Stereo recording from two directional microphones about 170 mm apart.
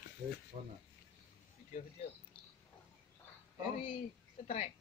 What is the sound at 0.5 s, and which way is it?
Speech, 45° right (ahead or behind).